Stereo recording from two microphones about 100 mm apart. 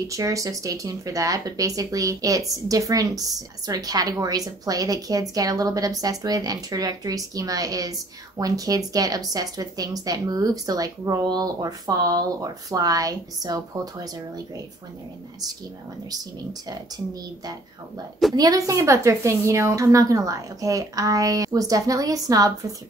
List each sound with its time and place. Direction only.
0.1 s speech: 35° right (ahead or behind)
16.6 s speech: 40° right (ahead or behind)